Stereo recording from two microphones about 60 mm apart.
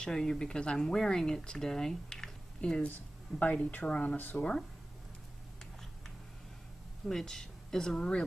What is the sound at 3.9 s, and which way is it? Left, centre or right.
Speech, left.